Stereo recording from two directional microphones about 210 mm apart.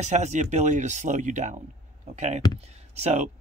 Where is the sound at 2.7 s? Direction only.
30° right (ahead or behind).